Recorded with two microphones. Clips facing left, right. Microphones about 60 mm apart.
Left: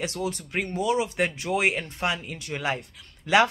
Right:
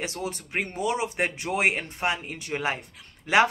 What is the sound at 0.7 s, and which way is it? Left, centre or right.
Speech, right.